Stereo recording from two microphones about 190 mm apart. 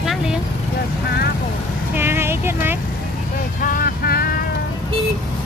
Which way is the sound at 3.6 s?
45° left (ahead or behind).